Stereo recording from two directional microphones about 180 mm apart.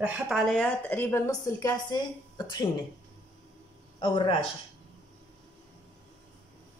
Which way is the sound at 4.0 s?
25° left (ahead or behind).